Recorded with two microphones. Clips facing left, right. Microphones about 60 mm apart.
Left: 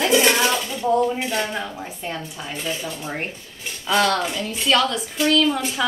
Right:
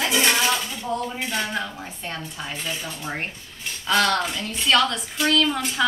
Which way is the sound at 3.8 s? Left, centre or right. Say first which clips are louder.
Left 1 dB; centre.